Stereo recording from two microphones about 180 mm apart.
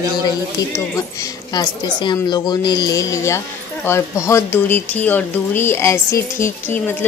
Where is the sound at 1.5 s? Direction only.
25° left (ahead or behind).